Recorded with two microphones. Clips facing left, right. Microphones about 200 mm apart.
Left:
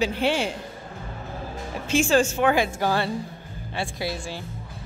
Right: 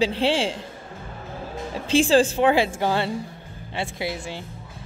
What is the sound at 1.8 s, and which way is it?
A woman's voice, 30° right (ahead or behind).